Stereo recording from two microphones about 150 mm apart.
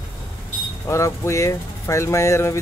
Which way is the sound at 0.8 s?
20° left (ahead or behind).